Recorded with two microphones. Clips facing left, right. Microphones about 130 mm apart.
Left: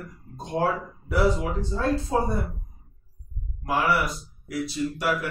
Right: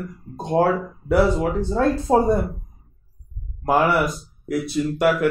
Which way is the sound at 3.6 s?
50° right (ahead or behind).